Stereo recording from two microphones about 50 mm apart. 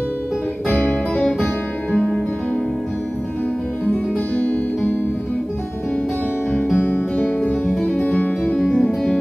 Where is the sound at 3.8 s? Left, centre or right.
Left.